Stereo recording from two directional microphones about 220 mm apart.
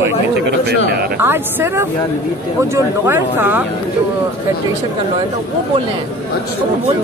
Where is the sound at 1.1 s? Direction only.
10° right (ahead or behind).